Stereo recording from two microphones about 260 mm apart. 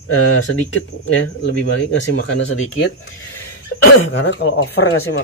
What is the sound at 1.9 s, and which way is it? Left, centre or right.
Speech, left.